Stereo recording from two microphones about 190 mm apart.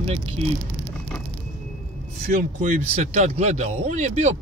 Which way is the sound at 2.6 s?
35° right (ahead or behind).